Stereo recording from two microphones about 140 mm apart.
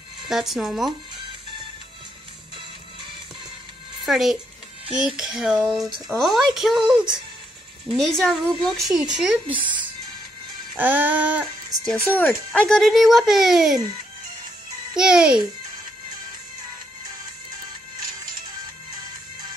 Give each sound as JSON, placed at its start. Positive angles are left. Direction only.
{"t": 0.3, "sound": "speech", "side_deg": 0}
{"t": 4.0, "sound": "speech", "side_deg": 0}
{"t": 9.5, "sound": "speech", "side_deg": -35}
{"t": 10.8, "sound": "child singing", "side_deg": -10}
{"t": 12.1, "sound": "speech", "side_deg": 10}
{"t": 15.0, "sound": "speech", "side_deg": -5}